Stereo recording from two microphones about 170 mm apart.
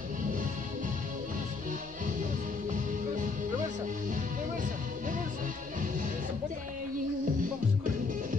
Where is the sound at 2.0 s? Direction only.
50° right (ahead or behind).